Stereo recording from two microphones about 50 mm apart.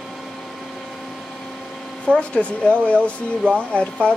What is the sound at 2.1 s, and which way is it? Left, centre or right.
Speech, left.